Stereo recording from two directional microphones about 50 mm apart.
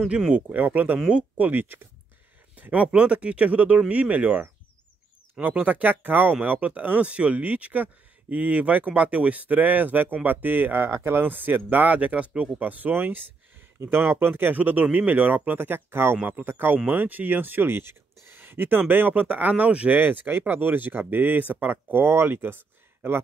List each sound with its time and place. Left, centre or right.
0.3 s speech: right
2.5 s a sound: right
2.9 s speech: right
16.2 s speech: right
20.0 s speech: right